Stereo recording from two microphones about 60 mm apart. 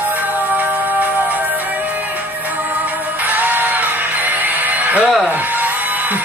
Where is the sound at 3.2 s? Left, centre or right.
Right.